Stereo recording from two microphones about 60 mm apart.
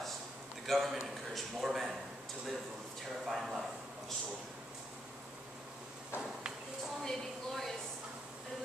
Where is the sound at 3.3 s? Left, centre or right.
Centre.